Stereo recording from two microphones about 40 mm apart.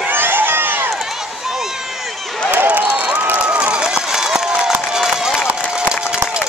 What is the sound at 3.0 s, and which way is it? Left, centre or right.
Run, right.